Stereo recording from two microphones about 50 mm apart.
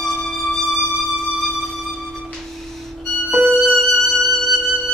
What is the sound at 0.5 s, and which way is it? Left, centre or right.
Music, centre.